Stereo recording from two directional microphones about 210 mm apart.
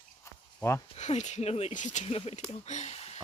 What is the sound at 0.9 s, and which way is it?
Speech, 30° left (ahead or behind).